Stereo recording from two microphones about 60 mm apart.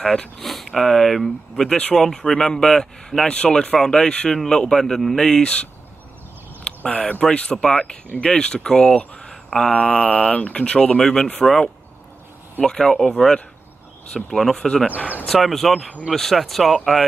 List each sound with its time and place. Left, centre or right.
0.0 s speech: centre
6.6 s speech: centre
9.3 s speech: centre
14.3 s speech: centre